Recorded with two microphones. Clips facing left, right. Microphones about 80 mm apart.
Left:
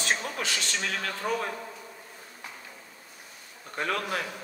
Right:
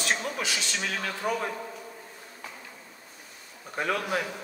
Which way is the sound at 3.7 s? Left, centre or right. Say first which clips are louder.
Right 2 dB; centre.